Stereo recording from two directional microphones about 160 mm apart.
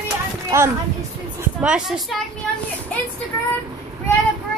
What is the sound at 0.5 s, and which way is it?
A child's voice, 15° right (ahead or behind).